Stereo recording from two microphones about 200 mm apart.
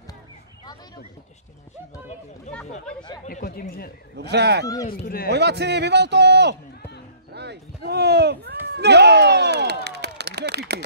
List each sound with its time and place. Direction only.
2.5 s speech: 35° left (ahead or behind)
3.3 s speech: 45° left (ahead or behind)
4.2 s a man's voice: 55° right (ahead or behind)
4.8 s speech: 50° left (ahead or behind)
5.3 s a man's voice: 55° right (ahead or behind)
8.6 s a sound: 55° right (ahead or behind)